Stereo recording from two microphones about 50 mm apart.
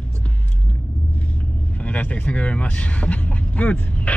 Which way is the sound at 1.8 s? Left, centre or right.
Left.